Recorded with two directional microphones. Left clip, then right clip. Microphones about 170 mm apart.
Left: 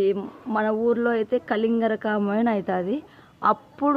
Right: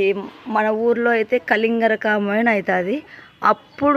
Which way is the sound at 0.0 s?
10° right (ahead or behind).